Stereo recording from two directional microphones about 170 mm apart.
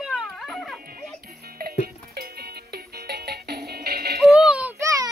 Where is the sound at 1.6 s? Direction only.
65° right (ahead or behind).